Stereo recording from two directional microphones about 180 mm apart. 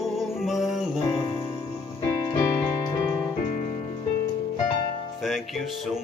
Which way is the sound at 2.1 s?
20° left (ahead or behind).